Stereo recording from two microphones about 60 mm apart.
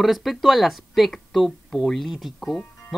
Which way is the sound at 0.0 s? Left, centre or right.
Centre.